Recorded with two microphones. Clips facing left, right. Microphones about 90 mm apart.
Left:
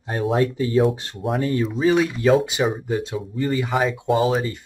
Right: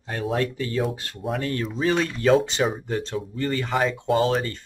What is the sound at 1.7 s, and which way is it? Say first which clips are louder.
Speech: left 4 dB; 5° left (ahead or behind).